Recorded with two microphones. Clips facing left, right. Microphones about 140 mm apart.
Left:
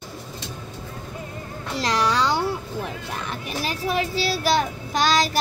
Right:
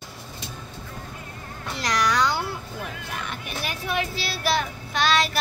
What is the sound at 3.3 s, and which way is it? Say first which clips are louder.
Child singing: left 4 dB; 35° left (ahead or behind).